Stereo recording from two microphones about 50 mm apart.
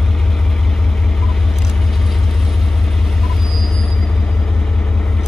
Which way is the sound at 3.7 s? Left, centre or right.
Centre.